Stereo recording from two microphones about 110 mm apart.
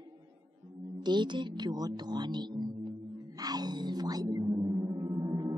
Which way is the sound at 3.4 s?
40° right (ahead or behind).